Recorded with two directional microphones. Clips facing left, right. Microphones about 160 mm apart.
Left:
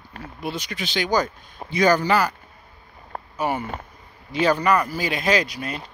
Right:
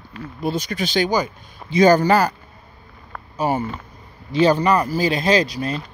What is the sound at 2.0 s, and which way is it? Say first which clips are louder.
Speech: right 4 dB; 40° right (ahead or behind).